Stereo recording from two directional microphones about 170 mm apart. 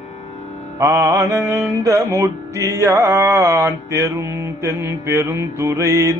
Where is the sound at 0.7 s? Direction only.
15° right (ahead or behind).